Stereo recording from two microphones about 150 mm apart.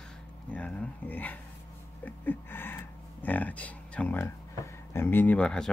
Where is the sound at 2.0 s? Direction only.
15° left (ahead or behind).